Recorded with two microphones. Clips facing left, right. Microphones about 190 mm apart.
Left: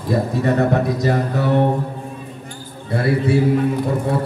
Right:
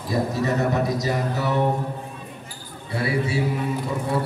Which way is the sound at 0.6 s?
60° left (ahead or behind).